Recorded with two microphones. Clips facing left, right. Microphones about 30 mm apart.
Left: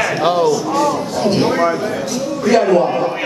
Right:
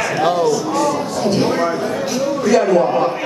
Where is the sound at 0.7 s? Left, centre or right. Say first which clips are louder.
Left 1 dB; centre.